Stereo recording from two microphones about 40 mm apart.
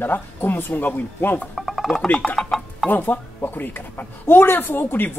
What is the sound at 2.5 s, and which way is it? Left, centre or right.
Chicken, centre.